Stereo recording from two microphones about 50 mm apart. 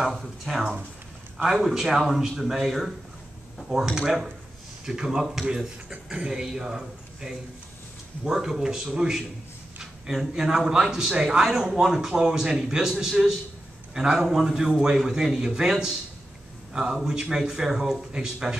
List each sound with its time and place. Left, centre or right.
0.0 s a man's voice: centre